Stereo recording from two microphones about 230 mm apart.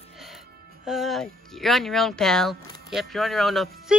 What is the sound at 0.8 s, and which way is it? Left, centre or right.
Speech, centre.